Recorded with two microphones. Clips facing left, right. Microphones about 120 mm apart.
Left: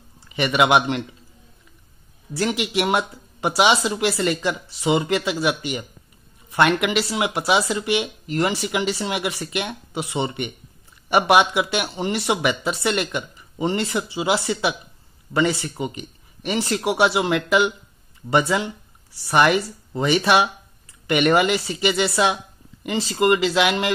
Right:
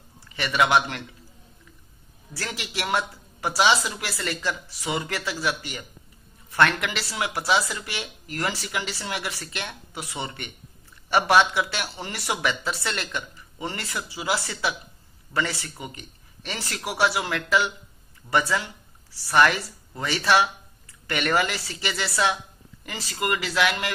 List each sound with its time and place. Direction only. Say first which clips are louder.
0.3 s speech: left 4 dB; 20° left (ahead or behind)
2.3 s speech: left 11 dB; 20° left (ahead or behind)